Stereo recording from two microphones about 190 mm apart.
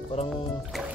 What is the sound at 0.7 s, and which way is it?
Music, centre (ahead or behind).